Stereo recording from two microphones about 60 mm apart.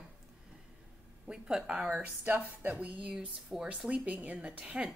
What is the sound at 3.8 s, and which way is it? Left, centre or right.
Speech, right.